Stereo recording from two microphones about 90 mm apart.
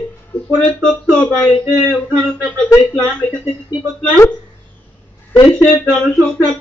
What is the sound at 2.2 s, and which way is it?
Speech, 10° left (ahead or behind).